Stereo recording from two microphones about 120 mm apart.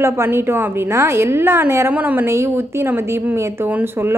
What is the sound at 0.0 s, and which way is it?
A woman's voice, 20° right (ahead or behind).